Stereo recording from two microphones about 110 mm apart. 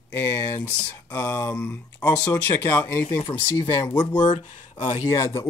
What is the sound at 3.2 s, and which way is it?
Speech, 45° left (ahead or behind).